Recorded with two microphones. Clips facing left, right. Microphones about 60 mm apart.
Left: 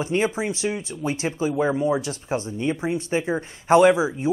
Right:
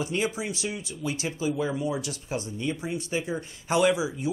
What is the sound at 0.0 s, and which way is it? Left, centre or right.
Speech, left.